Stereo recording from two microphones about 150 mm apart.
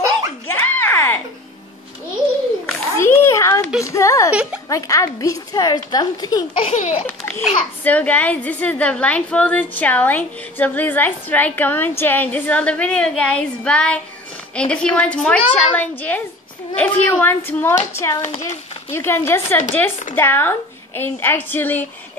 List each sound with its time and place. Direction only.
0.5 s a sound: 15° left (ahead or behind)
2.6 s children playing: 15° left (ahead or behind)
3.8 s a woman's voice: 20° left (ahead or behind)
4.3 s speech: 5° right (ahead or behind)
4.6 s a woman's voice: 20° left (ahead or behind)
6.6 s speech: 45° left (ahead or behind)
7.1 s a child's voice: 15° left (ahead or behind)
18.2 s speech: 50° left (ahead or behind)
18.9 s a woman's voice: 15° left (ahead or behind)